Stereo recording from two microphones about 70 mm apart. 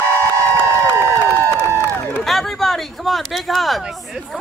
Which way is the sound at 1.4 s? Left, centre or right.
Right.